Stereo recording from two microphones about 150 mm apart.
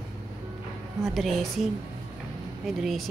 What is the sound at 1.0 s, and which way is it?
Speech, centre (ahead or behind).